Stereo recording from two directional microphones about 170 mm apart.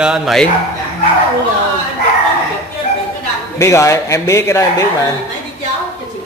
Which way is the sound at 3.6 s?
15° left (ahead or behind).